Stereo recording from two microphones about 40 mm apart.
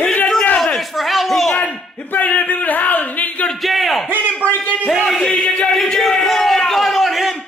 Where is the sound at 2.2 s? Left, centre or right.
Left.